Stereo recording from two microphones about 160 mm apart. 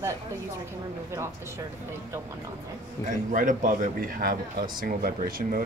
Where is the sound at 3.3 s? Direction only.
55° right (ahead or behind).